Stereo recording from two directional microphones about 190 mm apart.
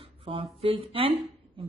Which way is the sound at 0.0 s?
30° right (ahead or behind).